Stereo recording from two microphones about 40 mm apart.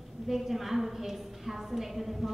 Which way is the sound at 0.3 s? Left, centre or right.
Centre.